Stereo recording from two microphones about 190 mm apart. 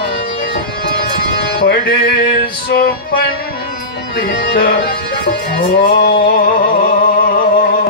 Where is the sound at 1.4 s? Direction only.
55° left (ahead or behind).